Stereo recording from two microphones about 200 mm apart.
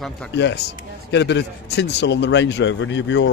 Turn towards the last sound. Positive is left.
turn(degrees=65)  # may be behind; listen again after turning